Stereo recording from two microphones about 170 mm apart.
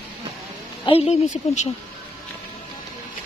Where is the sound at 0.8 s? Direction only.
35° left (ahead or behind).